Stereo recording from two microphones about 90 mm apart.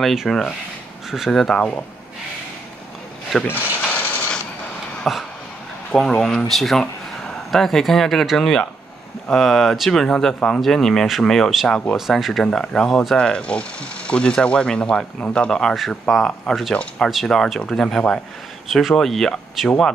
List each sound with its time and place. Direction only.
0.0 s speech: centre (ahead or behind); by 1.9 s 15° left (ahead or behind)
3.4 s mechanisms: 20° left (ahead or behind)
5.1 s speech: centre (ahead or behind)